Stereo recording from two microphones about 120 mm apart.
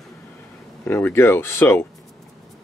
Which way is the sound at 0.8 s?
15° left (ahead or behind).